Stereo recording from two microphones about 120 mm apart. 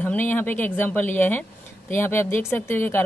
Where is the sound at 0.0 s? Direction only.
15° left (ahead or behind).